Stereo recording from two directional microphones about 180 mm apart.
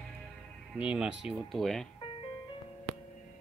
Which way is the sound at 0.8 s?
5° right (ahead or behind).